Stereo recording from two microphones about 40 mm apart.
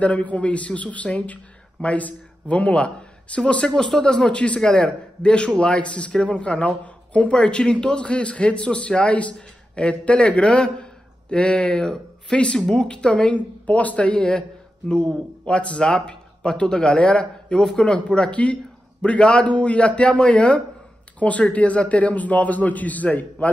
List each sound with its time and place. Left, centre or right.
0.0 s a man's voice: left
3.7 s a man's voice: centre; by 23.5 s left